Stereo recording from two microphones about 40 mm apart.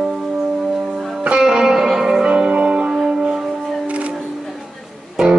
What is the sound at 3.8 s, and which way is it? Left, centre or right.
Music, right.